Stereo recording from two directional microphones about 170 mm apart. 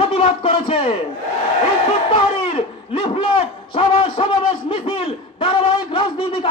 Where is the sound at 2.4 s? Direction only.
30° left (ahead or behind).